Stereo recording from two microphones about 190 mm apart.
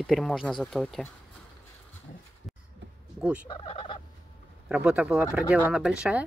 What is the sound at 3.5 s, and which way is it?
Fowl, 25° left (ahead or behind).